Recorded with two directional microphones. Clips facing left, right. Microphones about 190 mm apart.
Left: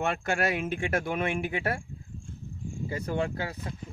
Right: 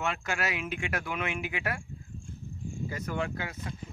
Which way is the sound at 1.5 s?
30° left (ahead or behind).